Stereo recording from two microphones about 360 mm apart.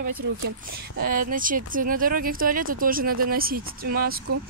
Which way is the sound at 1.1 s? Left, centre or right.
Right.